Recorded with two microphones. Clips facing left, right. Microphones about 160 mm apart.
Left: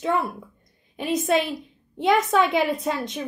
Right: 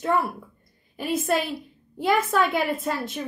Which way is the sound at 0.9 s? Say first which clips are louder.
Left 2 dB; 5° right (ahead or behind).